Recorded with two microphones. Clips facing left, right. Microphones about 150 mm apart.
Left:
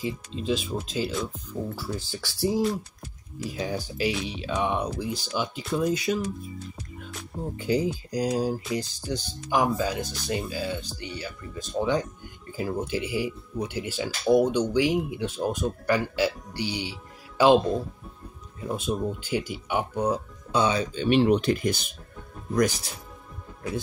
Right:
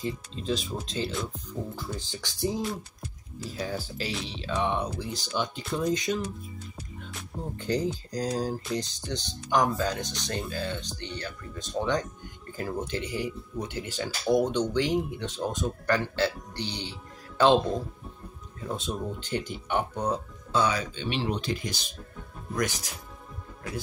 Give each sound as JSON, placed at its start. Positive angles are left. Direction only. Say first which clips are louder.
{"t": 0.0, "sound": "speech", "louder": "left 2 dB", "side_deg": 10}
{"t": 18.6, "sound": "speech", "louder": "left 4 dB", "side_deg": 10}
{"t": 20.9, "sound": "speech", "louder": "left 10 dB", "side_deg": 45}
{"t": 22.6, "sound": "speech", "louder": "left 6 dB", "side_deg": 35}